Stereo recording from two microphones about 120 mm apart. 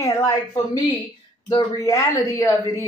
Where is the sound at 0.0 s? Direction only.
25° left (ahead or behind).